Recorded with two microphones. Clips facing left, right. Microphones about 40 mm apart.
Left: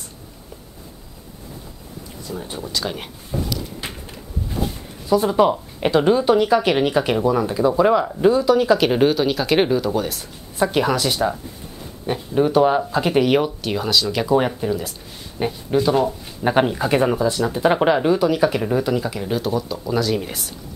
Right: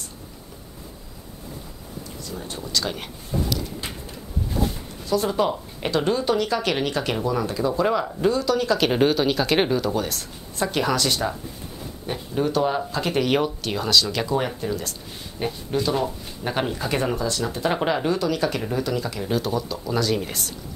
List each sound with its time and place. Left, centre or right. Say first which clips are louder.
2.2 s speech: left 5 dB; centre
5.1 s speech: left 6 dB; centre